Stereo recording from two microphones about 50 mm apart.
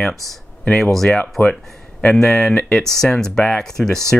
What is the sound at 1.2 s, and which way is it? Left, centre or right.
Speech, left.